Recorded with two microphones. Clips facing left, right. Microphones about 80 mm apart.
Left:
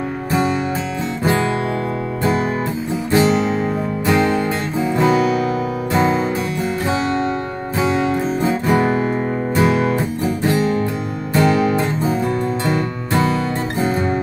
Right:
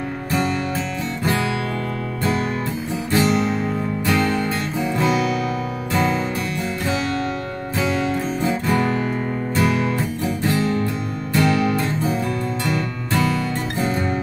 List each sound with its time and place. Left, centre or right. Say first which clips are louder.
0.3 s music: left 3 dB; left
3.1 s music: left 3 dB; centre
7.7 s music: left 4 dB; centre